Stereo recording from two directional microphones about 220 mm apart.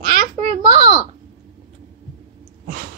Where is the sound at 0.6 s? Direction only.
20° right (ahead or behind).